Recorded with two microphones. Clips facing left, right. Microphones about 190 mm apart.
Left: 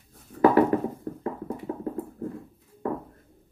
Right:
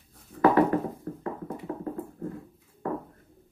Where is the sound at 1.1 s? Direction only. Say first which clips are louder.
Left 2 dB; 30° left (ahead or behind).